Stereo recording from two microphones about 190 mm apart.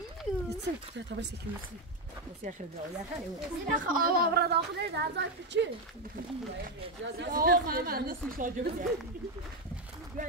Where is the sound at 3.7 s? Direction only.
45° right (ahead or behind); by 5.7 s 65° right (ahead or behind).